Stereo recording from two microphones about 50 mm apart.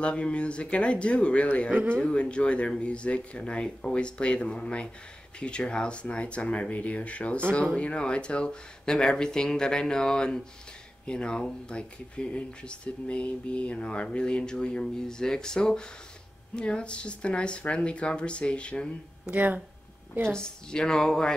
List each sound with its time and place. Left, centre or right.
0.0 s speech: left
1.7 s speech: right
2.0 s speech: centre
19.3 s speech: right
20.2 s speech: centre